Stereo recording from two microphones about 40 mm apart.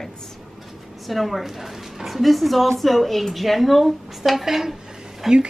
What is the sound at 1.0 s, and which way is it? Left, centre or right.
A woman's voice, centre.